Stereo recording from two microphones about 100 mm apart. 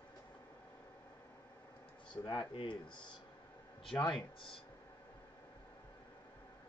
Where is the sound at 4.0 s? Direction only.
50° left (ahead or behind).